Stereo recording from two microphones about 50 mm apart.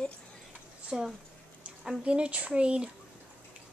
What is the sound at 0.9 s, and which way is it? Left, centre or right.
Speech, centre.